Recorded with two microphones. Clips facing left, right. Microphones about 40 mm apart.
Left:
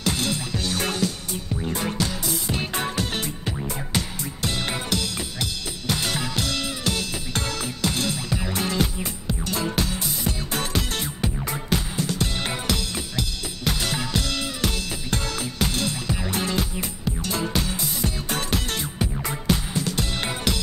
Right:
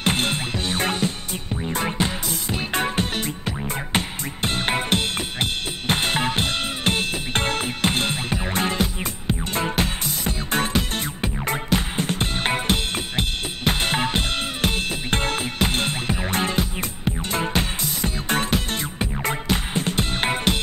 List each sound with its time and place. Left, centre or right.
0.0 s music: right